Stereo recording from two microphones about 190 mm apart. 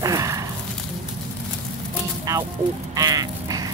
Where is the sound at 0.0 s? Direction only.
15° right (ahead or behind).